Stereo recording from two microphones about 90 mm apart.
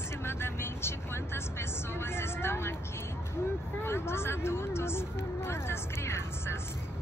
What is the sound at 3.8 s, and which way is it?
Speech, 30° left (ahead or behind).